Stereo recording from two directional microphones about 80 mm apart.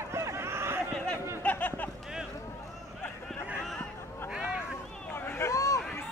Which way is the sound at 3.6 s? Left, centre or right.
Centre.